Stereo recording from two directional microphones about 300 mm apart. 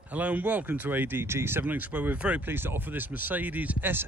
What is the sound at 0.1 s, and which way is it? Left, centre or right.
Speech, centre.